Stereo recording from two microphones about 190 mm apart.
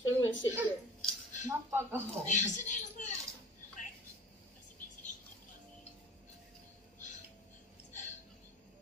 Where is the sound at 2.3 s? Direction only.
40° left (ahead or behind).